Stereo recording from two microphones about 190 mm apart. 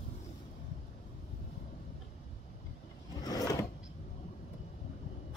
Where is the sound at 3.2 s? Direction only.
20° left (ahead or behind).